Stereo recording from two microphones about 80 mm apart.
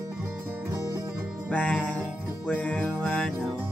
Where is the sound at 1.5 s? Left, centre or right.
Centre.